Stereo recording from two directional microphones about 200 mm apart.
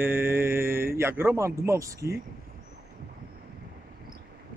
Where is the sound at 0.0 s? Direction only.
10° right (ahead or behind).